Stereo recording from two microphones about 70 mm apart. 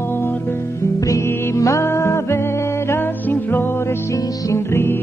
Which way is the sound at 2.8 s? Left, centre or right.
Left.